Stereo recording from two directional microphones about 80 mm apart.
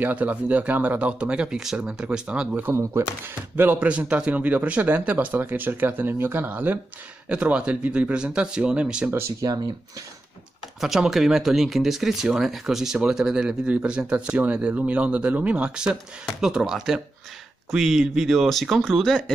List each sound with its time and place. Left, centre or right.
0.0 s speech: centre
2.7 s speech: right
3.5 s speech: right
3.9 s speech: centre
9.4 s speech: right
10.8 s speech: centre